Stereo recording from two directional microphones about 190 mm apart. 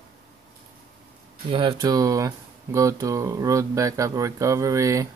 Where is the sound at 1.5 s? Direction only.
25° right (ahead or behind).